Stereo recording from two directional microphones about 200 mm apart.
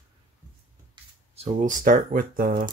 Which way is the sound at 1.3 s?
35° right (ahead or behind).